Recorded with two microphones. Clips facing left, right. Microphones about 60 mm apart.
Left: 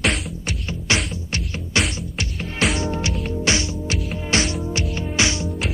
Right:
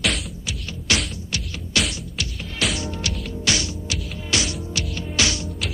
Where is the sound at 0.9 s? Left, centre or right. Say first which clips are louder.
Left 1 dB; left.